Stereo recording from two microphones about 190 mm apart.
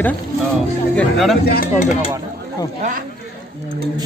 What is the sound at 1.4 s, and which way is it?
Speech, 45° left (ahead or behind).